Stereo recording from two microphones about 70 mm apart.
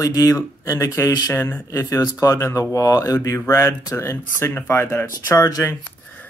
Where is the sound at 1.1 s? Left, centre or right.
Left.